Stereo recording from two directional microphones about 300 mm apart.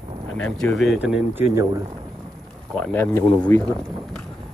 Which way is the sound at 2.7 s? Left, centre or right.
Centre.